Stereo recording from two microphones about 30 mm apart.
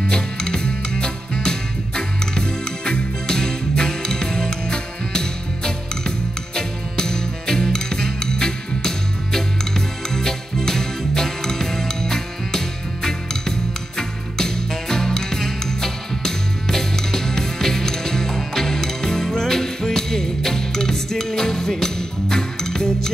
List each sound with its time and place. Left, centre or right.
0.1 s music: left